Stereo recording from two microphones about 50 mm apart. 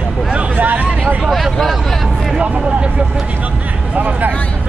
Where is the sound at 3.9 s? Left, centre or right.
Right.